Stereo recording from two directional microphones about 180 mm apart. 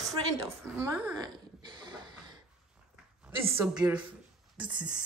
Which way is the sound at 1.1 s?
25° right (ahead or behind).